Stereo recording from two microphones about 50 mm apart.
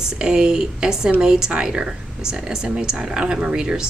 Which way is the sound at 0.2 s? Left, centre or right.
Centre.